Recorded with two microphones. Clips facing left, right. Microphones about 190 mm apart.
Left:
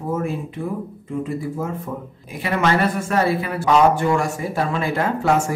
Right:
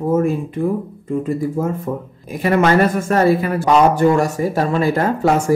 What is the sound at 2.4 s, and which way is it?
A woman's voice, 45° right (ahead or behind).